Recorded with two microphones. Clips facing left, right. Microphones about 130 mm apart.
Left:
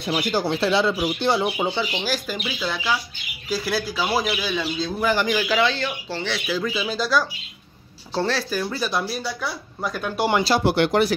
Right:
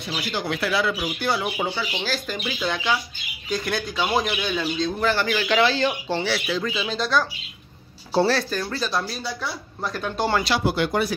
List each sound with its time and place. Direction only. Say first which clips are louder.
0.1 s speech: left 5 dB; 35° left (ahead or behind); by 5.6 s 10° left (ahead or behind)
5.8 s speech: right 5 dB; 20° right (ahead or behind)
6.2 s speech: even; centre (ahead or behind)
8.1 s speech: right 4 dB; 10° right (ahead or behind)
8.4 s speech: left 1 dB; 10° left (ahead or behind)
10.6 s speech: left 4 dB; 70° left (ahead or behind)